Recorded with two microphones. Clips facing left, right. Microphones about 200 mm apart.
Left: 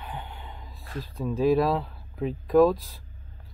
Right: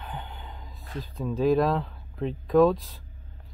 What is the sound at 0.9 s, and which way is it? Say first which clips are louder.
Speech: left 1 dB; centre (ahead or behind).